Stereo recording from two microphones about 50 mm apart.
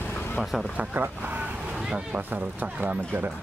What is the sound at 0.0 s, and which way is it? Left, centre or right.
Vehicle, left.